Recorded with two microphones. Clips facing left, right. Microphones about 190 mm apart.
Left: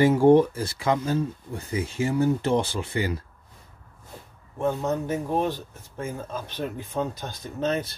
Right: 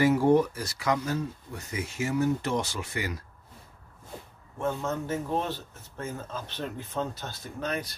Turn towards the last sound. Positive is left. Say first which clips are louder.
# left 6 dB
turn(degrees=25)  # may be behind; listen again after turning